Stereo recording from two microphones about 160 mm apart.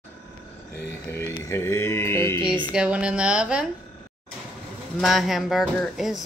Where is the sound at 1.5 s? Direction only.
15° left (ahead or behind).